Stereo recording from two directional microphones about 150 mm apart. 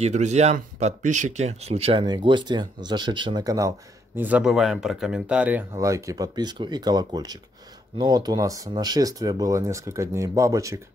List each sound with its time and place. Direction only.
0.0 s speech: 50° right (ahead or behind); by 3.7 s 20° right (ahead or behind)
4.2 s speech: 10° right (ahead or behind)